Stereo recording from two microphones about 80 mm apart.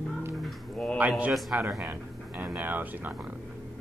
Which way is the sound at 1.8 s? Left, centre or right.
Right.